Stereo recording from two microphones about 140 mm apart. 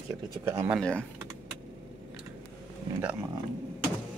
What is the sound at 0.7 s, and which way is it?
Speech, 5° left (ahead or behind).